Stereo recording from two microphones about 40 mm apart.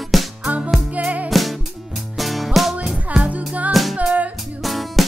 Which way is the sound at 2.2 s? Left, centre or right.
Centre.